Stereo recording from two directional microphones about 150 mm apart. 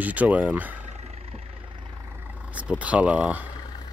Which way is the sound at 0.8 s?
50° right (ahead or behind).